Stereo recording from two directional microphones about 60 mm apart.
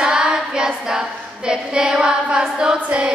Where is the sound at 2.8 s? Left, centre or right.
Centre.